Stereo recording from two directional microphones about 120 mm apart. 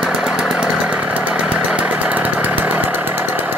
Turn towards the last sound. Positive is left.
turn(degrees=-15)  # may be behind; listen again after turning